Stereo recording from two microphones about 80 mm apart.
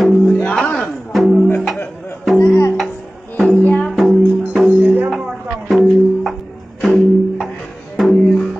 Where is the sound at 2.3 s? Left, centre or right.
Left.